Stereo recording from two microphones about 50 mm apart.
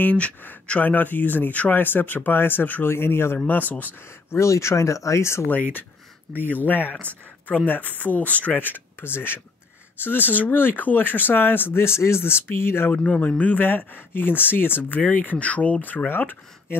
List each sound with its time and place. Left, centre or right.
0.0 s speech: left
2.9 s speech: left
3.4 s speech: left
4.3 s speech: left
5.5 s speech: left
8.0 s speech: left
12.9 s speech: left